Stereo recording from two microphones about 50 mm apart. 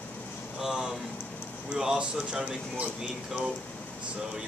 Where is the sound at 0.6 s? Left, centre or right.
Centre.